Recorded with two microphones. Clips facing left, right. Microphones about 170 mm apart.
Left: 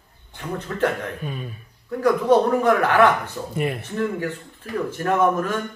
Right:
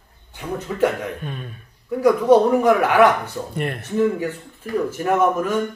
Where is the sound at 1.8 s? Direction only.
10° right (ahead or behind).